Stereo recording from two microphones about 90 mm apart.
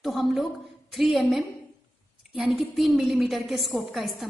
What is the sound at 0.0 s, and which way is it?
A woman's voice, centre (ahead or behind).